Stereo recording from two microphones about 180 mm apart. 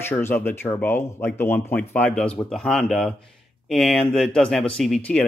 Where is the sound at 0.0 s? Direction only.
10° left (ahead or behind).